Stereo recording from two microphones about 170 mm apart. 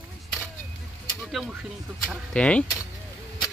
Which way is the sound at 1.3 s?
5° right (ahead or behind).